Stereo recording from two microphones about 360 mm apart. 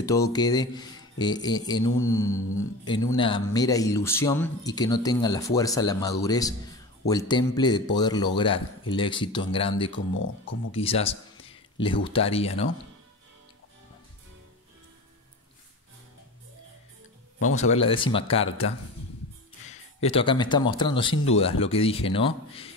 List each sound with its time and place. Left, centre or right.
0.0 s speech: centre
9.9 s speech: left
10.7 s speech: centre
17.6 s speech: centre
20.0 s speech: centre